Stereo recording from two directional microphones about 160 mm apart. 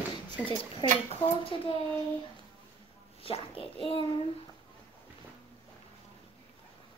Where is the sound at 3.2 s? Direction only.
35° left (ahead or behind).